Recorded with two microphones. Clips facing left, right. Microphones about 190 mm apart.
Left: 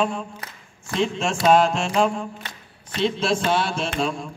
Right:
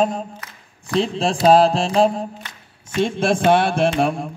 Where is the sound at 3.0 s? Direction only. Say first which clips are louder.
Right 4 dB; 55° right (ahead or behind).